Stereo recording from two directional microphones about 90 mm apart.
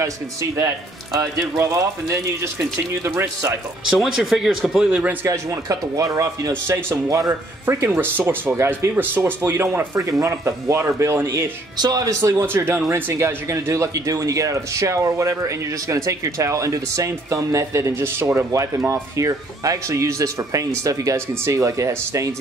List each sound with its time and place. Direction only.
0.0 s a man's voice: 35° right (ahead or behind)
3.9 s speech: centre (ahead or behind)
5.2 s speech: 35° right (ahead or behind)
11.8 s speech: 45° right (ahead or behind)
12.2 s a man's voice: 30° right (ahead or behind)